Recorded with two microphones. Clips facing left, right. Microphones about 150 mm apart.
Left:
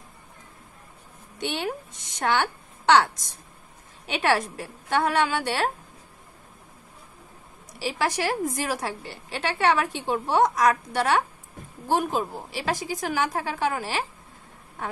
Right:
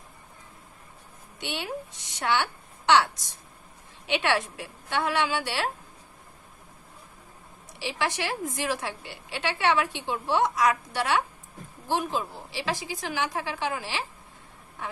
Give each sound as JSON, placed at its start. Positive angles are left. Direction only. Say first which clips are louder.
{"t": 1.4, "sound": "a woman's voice", "louder": "left 4 dB", "side_deg": 45}
{"t": 4.1, "sound": "a woman's voice", "louder": "left 2 dB", "side_deg": 40}
{"t": 7.8, "sound": "a woman's voice", "louder": "left 4 dB", "side_deg": 40}